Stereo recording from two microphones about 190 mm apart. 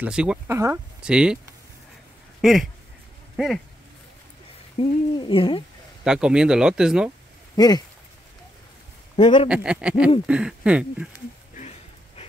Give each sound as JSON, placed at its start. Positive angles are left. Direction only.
{"t": 0.0, "sound": "speech", "side_deg": -5}
{"t": 2.4, "sound": "speech", "side_deg": 0}
{"t": 4.7, "sound": "a woman's voice", "side_deg": 30}
{"t": 6.0, "sound": "speech", "side_deg": -5}
{"t": 7.5, "sound": "speech", "side_deg": 20}
{"t": 9.1, "sound": "a man's voice", "side_deg": 25}
{"t": 9.5, "sound": "speech", "side_deg": -5}